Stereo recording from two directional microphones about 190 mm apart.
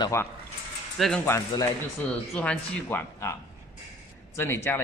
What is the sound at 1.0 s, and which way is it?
Speech, 5° left (ahead or behind).